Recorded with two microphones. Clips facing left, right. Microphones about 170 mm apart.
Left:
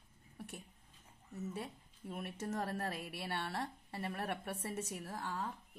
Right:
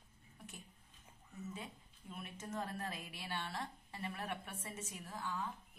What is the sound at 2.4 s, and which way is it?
Speech, 40° left (ahead or behind).